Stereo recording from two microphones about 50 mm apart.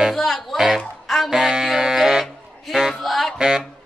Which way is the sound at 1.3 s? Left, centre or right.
Centre.